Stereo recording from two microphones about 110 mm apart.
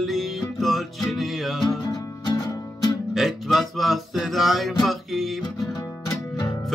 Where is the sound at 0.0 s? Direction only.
Centre (ahead or behind).